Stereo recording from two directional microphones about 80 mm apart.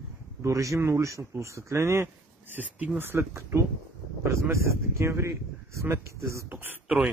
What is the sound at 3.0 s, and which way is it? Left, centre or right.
Speech, right.